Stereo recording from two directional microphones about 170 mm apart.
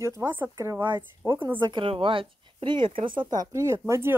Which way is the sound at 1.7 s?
30° right (ahead or behind).